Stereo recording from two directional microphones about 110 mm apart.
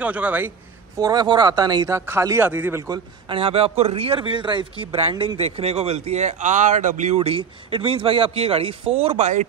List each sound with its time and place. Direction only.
0.0 s a man's voice: 15° right (ahead or behind)
0.9 s speech: 35° right (ahead or behind)
2.0 s speech: 25° right (ahead or behind)
3.3 s speech: 60° right (ahead or behind)
4.2 s speech: 45° right (ahead or behind)
5.4 s speech: 65° right (ahead or behind); by 9.5 s 90° right